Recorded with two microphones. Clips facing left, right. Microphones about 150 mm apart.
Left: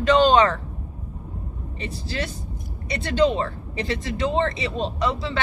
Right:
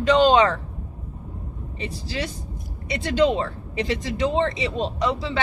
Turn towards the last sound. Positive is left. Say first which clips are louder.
# right 1 dB
turn(degrees=-15)  # may be behind; listen again after turning